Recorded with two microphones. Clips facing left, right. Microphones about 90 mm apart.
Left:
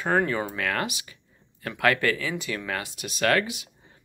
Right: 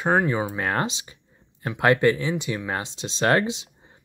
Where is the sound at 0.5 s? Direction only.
25° right (ahead or behind).